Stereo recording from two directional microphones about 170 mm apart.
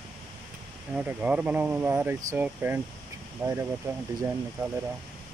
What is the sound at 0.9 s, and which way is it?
Speech, 10° right (ahead or behind).